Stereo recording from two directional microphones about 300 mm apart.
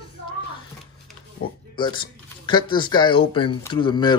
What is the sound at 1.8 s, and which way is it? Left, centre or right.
Speech, centre.